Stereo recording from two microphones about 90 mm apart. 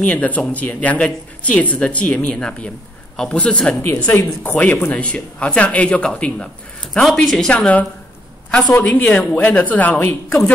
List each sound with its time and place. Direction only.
0.0 s speech: 15° left (ahead or behind)
3.8 s a woman's voice: 20° left (ahead or behind)
8.9 s a woman's voice: 20° left (ahead or behind)